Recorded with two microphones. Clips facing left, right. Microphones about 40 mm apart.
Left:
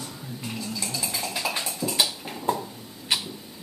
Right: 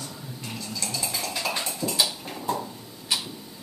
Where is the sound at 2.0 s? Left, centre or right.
Centre.